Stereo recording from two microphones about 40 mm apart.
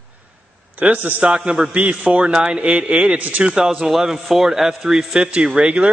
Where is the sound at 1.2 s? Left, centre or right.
Right.